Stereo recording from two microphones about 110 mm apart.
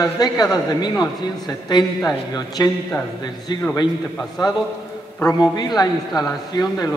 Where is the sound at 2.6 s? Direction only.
35° left (ahead or behind).